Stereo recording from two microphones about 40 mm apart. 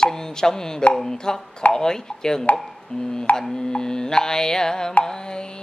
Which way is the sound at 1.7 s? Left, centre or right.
Centre.